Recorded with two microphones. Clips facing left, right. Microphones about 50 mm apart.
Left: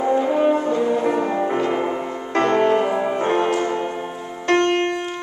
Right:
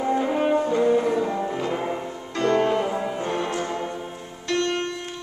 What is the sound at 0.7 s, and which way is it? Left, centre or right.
Music, centre.